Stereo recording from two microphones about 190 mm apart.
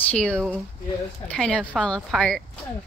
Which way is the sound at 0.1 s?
5° left (ahead or behind).